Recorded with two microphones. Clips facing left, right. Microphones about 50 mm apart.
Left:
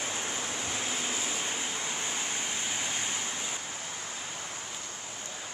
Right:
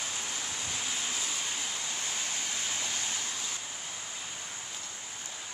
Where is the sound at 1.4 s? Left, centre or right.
Left.